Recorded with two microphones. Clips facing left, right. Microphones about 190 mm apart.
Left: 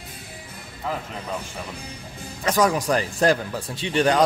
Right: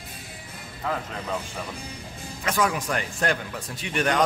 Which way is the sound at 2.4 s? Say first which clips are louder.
Left 5 dB; 40° left (ahead or behind).